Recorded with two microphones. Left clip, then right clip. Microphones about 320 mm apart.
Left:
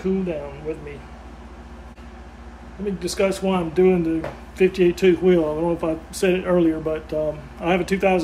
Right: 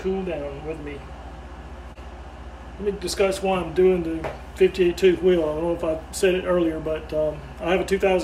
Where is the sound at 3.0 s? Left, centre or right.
Centre.